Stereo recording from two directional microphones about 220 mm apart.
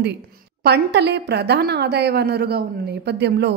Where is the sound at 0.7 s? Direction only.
50° right (ahead or behind).